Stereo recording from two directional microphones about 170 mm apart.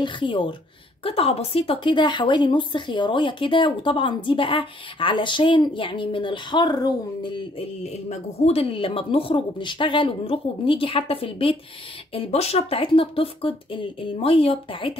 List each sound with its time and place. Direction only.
0.0 s a woman's voice: 30° left (ahead or behind)
7.8 s speech: 40° left (ahead or behind)